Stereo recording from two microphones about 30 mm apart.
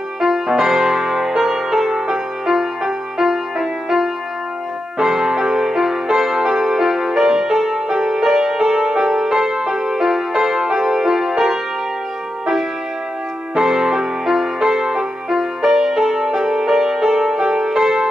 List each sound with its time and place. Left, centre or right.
0.2 s music: centre
13.6 s music: centre